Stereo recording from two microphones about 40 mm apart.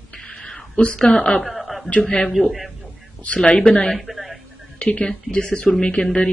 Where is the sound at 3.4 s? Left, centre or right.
Left.